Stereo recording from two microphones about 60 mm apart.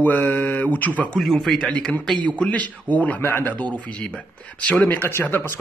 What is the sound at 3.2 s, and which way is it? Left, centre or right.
Speech, left.